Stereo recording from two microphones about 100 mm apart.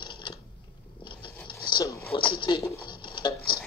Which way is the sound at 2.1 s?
50° left (ahead or behind).